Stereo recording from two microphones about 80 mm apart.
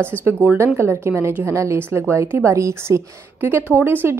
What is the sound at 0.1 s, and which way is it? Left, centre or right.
A woman's voice, right.